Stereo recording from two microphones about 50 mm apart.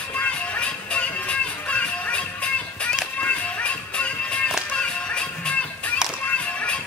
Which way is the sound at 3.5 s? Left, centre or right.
Left.